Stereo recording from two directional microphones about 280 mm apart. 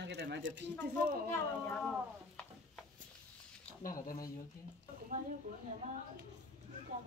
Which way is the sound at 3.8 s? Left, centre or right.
Left.